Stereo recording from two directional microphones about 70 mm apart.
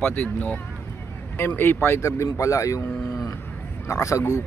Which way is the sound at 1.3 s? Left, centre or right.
Left.